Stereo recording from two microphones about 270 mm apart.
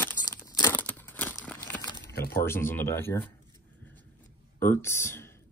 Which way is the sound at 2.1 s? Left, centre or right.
Left.